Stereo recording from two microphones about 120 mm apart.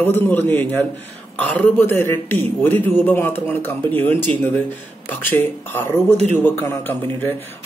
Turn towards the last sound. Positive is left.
turn(degrees=15)  # may be behind; listen again after turning